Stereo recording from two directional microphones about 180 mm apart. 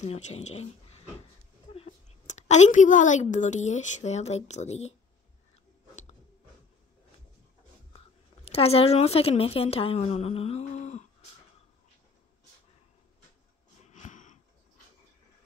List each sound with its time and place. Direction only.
0.0 s a woman's voice: 40° left (ahead or behind)
8.5 s a woman's voice: 35° left (ahead or behind)
13.8 s a sound: 40° left (ahead or behind)